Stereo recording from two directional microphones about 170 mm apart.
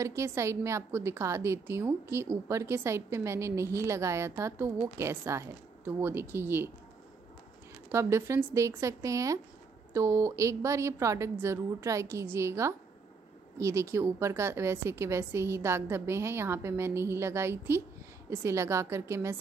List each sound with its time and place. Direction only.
0.0 s a woman's voice: 15° right (ahead or behind)
7.9 s a woman's voice: 15° right (ahead or behind)